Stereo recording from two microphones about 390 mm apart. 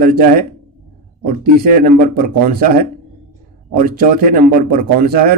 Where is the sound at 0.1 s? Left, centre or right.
Right.